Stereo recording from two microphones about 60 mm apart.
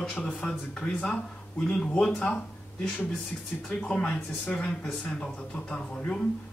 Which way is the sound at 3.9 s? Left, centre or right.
Centre.